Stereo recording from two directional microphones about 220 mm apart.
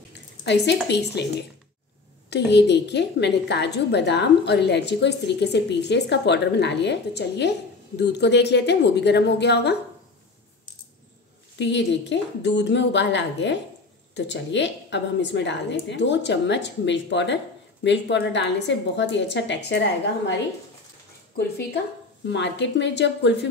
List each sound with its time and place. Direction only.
0.8 s a woman's voice: 50° left (ahead or behind)
11.5 s a woman's voice: 55° left (ahead or behind)
22.3 s a woman's voice: 55° left (ahead or behind)